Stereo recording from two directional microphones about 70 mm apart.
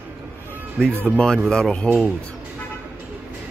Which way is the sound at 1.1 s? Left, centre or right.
Centre.